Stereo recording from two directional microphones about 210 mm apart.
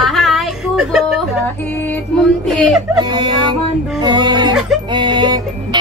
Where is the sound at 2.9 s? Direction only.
20° right (ahead or behind).